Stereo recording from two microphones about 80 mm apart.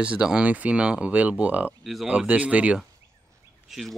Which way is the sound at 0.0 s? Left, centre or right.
Centre.